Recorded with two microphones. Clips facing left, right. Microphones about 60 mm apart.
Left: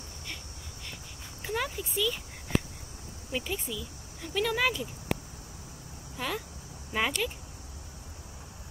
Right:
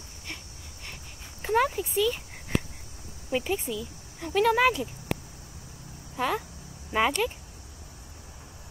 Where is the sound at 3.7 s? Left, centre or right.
Right.